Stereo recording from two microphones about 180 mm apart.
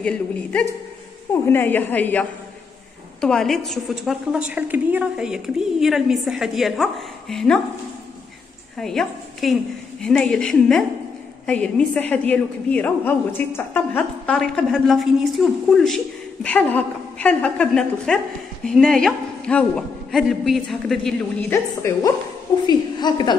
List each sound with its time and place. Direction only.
0.0 s a woman's voice: 5° left (ahead or behind)
8.7 s a woman's voice: centre (ahead or behind)
21.4 s a woman's voice: 15° left (ahead or behind)